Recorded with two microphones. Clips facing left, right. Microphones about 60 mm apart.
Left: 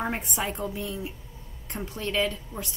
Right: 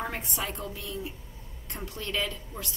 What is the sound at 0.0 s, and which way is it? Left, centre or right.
A woman's voice, centre.